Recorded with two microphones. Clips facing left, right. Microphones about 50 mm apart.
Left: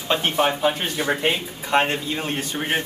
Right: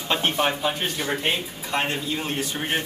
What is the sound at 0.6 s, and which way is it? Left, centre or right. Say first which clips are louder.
Speech: left 4 dB; left.